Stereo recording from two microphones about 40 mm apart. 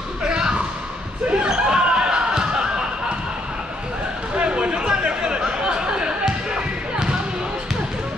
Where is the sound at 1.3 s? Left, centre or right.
Right.